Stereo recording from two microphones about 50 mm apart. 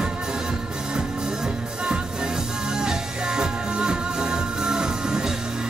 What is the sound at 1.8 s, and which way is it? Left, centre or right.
Music, centre.